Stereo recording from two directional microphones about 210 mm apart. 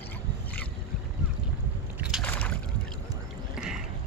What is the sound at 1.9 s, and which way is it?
Boat, 5° right (ahead or behind).